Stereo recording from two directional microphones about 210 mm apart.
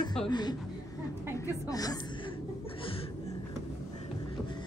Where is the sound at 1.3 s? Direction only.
15° left (ahead or behind).